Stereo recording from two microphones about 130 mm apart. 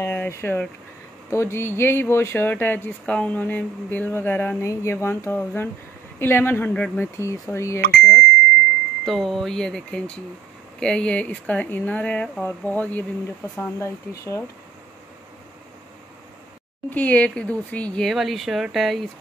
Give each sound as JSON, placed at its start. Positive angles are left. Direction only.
{"t": 0.0, "sound": "a sound", "side_deg": 20}
{"t": 1.3, "sound": "speech", "side_deg": 20}
{"t": 8.0, "sound": "speech", "side_deg": 5}
{"t": 13.7, "sound": "speech", "side_deg": 25}
{"t": 16.9, "sound": "speech", "side_deg": 10}